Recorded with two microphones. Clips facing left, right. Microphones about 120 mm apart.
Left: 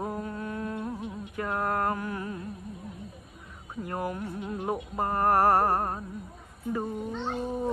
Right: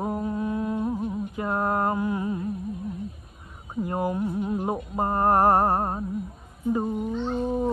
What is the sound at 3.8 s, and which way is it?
Mantra, 20° right (ahead or behind).